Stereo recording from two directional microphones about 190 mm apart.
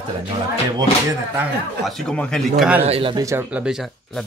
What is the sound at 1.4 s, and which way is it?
A man's voice, centre (ahead or behind).